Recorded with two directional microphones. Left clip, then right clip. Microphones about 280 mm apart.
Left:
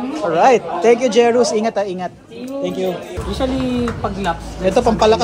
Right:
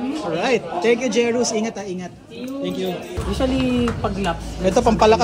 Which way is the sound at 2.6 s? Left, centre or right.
Centre.